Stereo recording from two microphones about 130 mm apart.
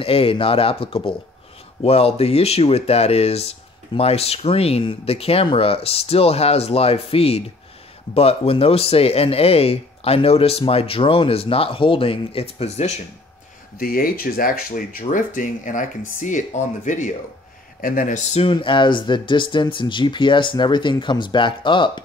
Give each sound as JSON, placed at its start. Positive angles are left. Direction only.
{"t": 0.0, "sound": "speech", "side_deg": 45}
{"t": 13.7, "sound": "speech", "side_deg": 90}
{"t": 17.7, "sound": "speech", "side_deg": 90}
{"t": 18.5, "sound": "speech", "side_deg": 40}